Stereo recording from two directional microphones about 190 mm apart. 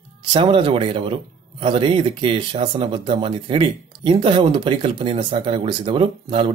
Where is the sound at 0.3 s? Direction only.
25° right (ahead or behind).